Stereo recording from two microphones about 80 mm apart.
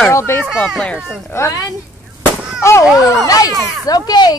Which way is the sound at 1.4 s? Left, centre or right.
Left.